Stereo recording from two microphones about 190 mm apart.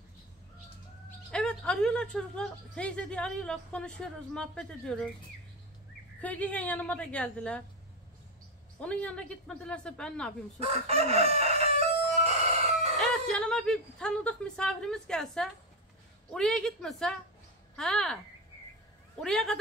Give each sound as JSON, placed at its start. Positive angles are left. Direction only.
{"t": 1.3, "sound": "speech", "side_deg": 5}
{"t": 6.2, "sound": "a woman's voice", "side_deg": 10}
{"t": 8.7, "sound": "speech", "side_deg": 5}
{"t": 10.6, "sound": "chicken", "side_deg": -35}
{"t": 13.0, "sound": "speech", "side_deg": 0}
{"t": 19.2, "sound": "speech", "side_deg": 5}